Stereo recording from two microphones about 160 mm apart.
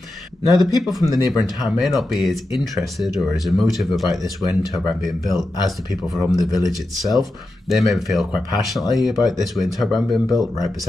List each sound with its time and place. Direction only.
0.6 s speech: centre (ahead or behind)
1.0 s speech: 20° right (ahead or behind)
1.6 s speech: centre (ahead or behind)